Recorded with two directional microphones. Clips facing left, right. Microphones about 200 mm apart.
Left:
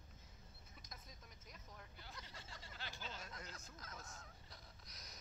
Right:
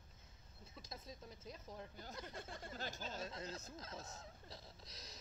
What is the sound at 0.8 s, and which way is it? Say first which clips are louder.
Speech: right 9 dB; 30° right (ahead or behind).